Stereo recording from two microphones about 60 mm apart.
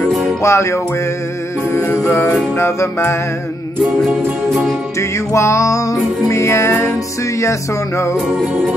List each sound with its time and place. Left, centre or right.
0.4 s music: left
2.5 s music: left
5.3 s music: left